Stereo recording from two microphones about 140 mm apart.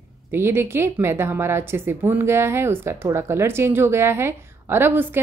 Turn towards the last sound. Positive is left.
turn(degrees=-15)  # may be behind; listen again after turning